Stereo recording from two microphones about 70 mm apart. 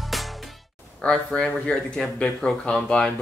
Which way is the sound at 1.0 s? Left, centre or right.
Centre.